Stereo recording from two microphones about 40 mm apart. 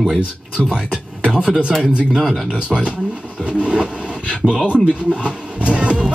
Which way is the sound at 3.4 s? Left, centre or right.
Right.